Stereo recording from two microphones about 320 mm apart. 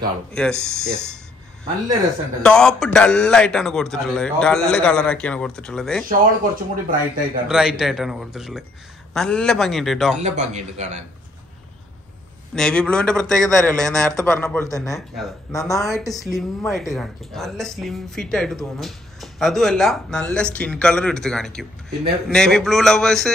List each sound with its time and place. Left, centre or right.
0.3 s a man's voice: centre
2.4 s a man's voice: centre
6.0 s speech: right
7.4 s a man's voice: centre
10.2 s speech: right
12.5 s a man's voice: centre